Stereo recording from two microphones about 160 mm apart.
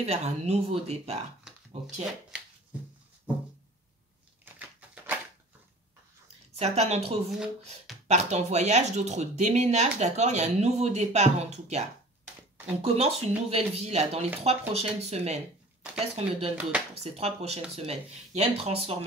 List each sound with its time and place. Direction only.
0.0 s speech: 40° right (ahead or behind)
4.6 s a sound: 10° right (ahead or behind)
6.6 s speech: 45° right (ahead or behind)
7.2 s speech: 5° right (ahead or behind)
8.1 s speech: 45° right (ahead or behind)
12.8 s speech: 40° right (ahead or behind)